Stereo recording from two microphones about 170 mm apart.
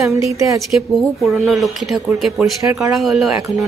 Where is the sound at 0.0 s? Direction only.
15° right (ahead or behind).